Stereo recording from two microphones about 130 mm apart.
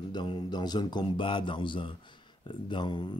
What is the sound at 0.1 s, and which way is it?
Speech, 35° left (ahead or behind).